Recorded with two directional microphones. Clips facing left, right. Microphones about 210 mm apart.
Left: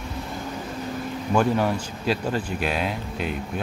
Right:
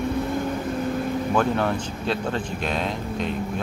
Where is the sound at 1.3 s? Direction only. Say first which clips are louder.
Left 3 dB; 10° left (ahead or behind).